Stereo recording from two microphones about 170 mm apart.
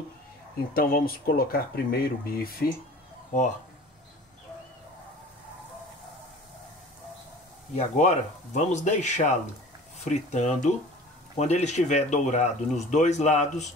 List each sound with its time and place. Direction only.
0.7 s speech: 60° left (ahead or behind)
7.7 s speech: 45° left (ahead or behind)